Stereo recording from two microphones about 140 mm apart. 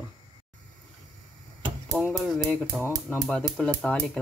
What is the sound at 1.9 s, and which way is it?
Speech, centre (ahead or behind).